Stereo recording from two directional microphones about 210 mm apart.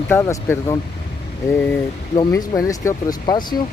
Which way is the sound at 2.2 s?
15° left (ahead or behind).